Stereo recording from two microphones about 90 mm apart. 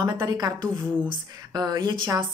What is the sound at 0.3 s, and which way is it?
A woman's voice, 45° right (ahead or behind).